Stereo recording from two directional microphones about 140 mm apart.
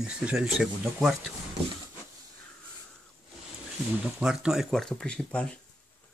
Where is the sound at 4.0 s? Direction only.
5° right (ahead or behind).